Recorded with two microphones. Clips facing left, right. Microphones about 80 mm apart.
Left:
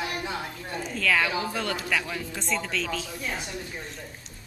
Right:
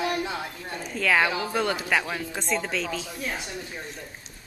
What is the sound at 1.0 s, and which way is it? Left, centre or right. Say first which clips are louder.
Speech: right 2 dB; right.